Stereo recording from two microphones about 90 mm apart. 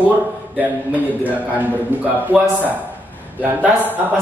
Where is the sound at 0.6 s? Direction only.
15° right (ahead or behind).